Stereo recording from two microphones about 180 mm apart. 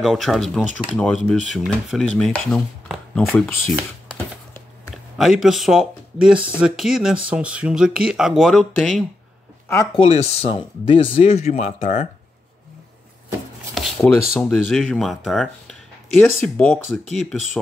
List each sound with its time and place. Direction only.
0.0 s chopping: centre (ahead or behind)
4.9 s speech: centre (ahead or behind)
6.6 s chopping: centre (ahead or behind)
9.9 s speech: 35° left (ahead or behind)
13.7 s a sound: 5° left (ahead or behind)
14.3 s speech: centre (ahead or behind)
16.3 s chopping: 5° left (ahead or behind)